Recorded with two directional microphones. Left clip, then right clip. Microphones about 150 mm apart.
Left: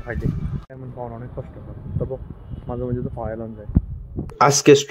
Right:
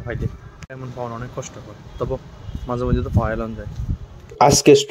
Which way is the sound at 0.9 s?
40° right (ahead or behind).